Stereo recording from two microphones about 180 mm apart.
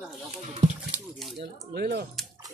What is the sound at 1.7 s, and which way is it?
Speech, 60° right (ahead or behind).